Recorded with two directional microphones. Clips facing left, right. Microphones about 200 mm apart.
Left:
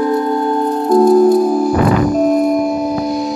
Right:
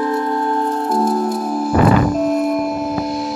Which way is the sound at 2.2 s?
Centre (ahead or behind).